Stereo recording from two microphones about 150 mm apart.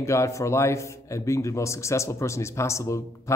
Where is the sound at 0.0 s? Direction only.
20° left (ahead or behind).